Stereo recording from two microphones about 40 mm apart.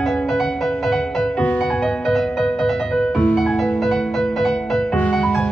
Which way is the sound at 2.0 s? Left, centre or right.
Centre.